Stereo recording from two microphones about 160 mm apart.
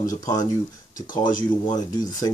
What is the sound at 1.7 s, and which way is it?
Speech, 20° left (ahead or behind).